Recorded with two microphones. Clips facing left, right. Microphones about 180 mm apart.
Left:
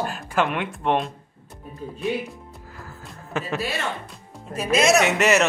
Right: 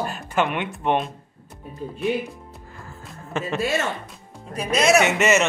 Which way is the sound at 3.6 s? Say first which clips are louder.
Right 4 dB; 45° right (ahead or behind).